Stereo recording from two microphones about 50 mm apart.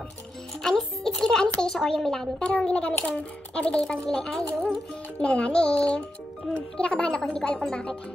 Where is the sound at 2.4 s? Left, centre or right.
Left.